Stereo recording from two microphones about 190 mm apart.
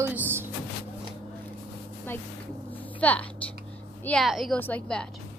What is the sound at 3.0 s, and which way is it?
A woman's voice, 5° left (ahead or behind).